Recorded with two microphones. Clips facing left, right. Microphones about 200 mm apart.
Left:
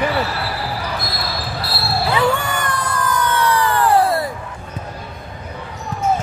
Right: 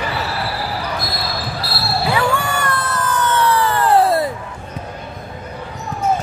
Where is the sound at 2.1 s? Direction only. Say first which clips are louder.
Left 1 dB; 20° left (ahead or behind).